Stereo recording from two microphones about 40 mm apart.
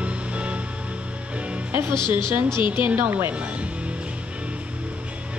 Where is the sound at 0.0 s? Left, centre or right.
Right.